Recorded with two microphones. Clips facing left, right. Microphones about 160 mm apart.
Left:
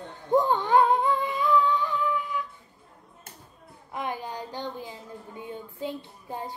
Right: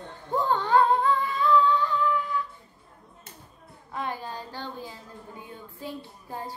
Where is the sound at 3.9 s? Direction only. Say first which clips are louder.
Left 1 dB; 15° left (ahead or behind).